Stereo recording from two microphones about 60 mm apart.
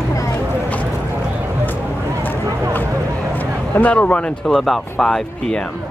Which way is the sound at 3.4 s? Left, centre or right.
Left.